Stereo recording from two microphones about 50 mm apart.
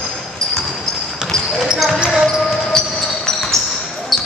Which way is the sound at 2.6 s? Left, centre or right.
Centre.